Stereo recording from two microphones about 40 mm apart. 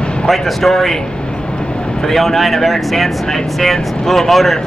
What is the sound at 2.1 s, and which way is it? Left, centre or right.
Speech, centre.